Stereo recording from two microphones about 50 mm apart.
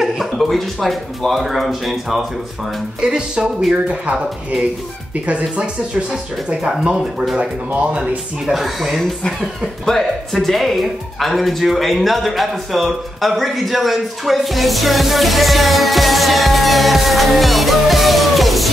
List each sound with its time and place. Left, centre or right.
0.0 s speech: centre
3.0 s music: centre
3.9 s speech: right
7.3 s speech: right
8.5 s speech: centre